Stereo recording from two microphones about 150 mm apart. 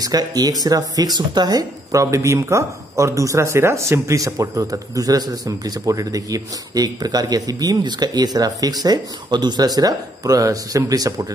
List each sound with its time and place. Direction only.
0.0 s speech: 25° right (ahead or behind)